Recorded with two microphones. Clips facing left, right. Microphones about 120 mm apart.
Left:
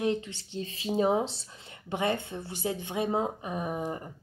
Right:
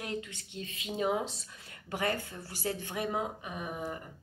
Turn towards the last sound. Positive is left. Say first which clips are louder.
# left 6 dB
turn(degrees=35)  # may be behind; listen again after turning